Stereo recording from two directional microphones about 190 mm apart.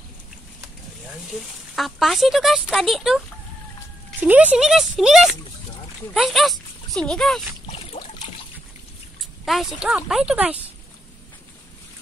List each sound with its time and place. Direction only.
1.8 s speech: centre (ahead or behind)
7.6 s a sound: 35° left (ahead or behind)
9.2 s speech: centre (ahead or behind)